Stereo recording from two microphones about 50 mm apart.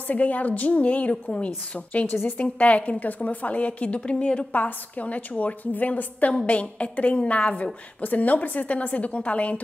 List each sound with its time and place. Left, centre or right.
0.1 s a woman's voice: left